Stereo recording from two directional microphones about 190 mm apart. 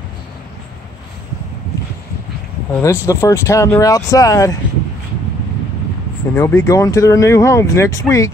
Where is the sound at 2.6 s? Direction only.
10° left (ahead or behind).